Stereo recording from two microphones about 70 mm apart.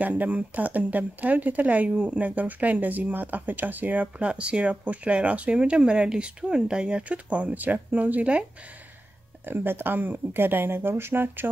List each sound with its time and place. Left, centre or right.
0.0 s speech: right
9.5 s speech: right